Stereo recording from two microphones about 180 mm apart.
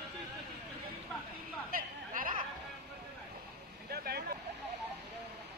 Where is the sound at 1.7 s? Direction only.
50° right (ahead or behind).